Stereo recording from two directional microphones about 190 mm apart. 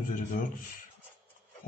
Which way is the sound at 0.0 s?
45° left (ahead or behind).